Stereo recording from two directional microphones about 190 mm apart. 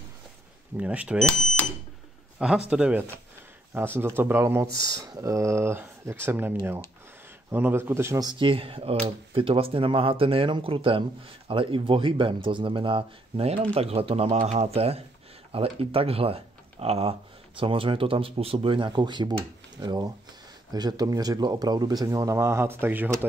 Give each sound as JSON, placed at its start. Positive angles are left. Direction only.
{"t": 0.7, "sound": "a man's voice", "side_deg": -5}
{"t": 7.5, "sound": "speech", "side_deg": -10}